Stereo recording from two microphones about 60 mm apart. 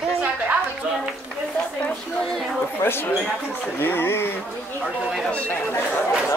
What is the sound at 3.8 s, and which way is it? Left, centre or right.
Speech, left.